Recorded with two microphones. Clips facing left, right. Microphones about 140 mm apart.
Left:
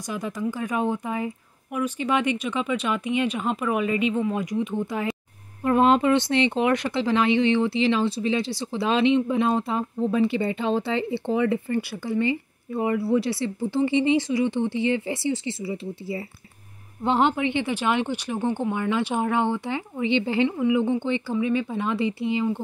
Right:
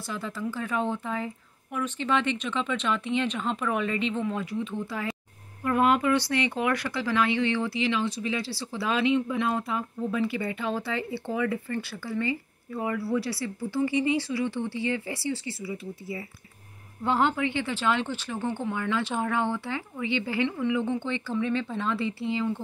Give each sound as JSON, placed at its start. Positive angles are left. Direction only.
{"t": 0.1, "sound": "speech", "side_deg": 15}